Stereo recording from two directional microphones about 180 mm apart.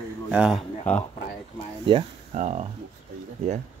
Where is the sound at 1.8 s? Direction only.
30° right (ahead or behind).